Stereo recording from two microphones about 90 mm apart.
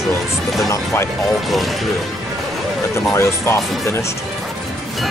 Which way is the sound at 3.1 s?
30° left (ahead or behind).